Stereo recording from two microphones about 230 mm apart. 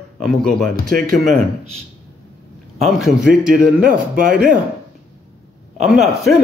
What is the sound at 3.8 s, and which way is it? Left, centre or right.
Speech, right.